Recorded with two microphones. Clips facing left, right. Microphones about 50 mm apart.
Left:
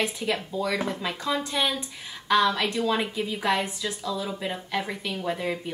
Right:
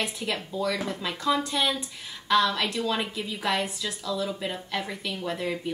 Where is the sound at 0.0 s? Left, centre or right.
Centre.